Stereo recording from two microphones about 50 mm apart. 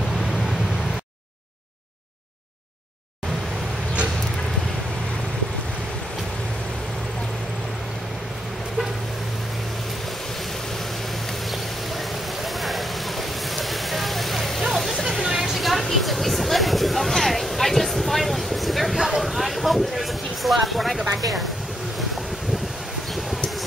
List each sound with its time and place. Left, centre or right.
0.1 s vehicle: centre
12.5 s vehicle: centre
16.0 s a sound: centre